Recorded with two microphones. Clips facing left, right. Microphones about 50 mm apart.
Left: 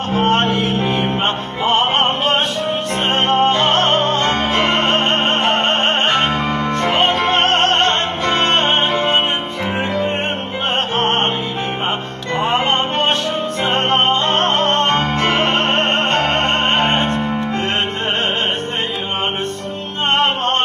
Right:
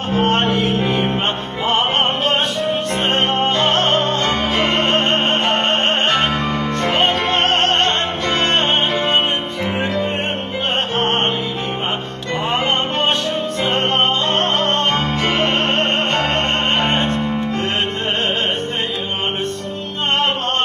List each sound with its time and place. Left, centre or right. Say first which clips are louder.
0.2 s music: left 1 dB; centre
2.0 s music: left 1 dB; left
3.1 s music: left 4 dB; centre
11.0 s music: left 2 dB; centre
12.5 s music: left 1 dB; centre
14.2 s music: left 2 dB; left
16.3 s music: left 2 dB; centre